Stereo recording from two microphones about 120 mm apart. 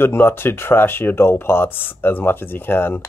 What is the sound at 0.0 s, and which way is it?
Speech, 15° left (ahead or behind).